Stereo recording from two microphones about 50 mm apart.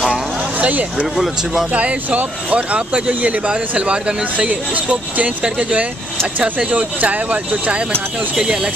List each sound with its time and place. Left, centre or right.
0.6 s speech: right
1.1 s speech: centre
1.7 s speech: right